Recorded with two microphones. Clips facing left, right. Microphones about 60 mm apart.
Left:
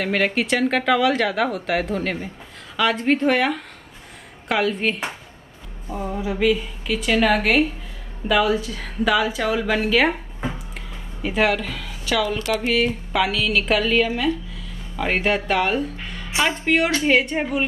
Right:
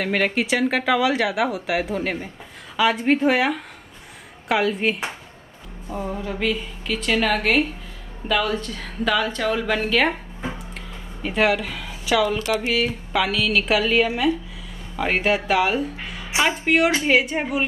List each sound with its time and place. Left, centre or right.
0.0 s speech: centre
11.2 s speech: centre